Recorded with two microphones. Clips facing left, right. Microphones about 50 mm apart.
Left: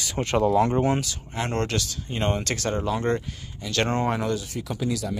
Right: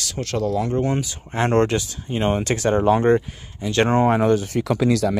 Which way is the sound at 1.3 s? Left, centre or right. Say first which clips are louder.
Right 10 dB; right.